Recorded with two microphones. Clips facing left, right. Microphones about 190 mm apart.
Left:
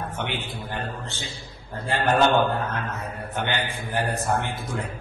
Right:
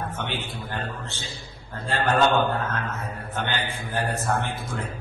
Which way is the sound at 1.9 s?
15° left (ahead or behind).